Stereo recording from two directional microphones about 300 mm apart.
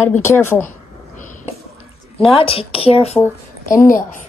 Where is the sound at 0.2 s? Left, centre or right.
Centre.